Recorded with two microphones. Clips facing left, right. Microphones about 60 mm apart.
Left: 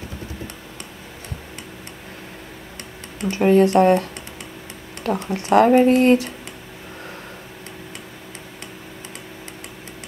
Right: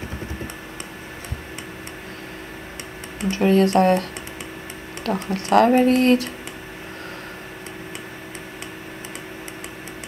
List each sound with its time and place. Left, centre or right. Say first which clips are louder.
3.3 s speech: left 2 dB; centre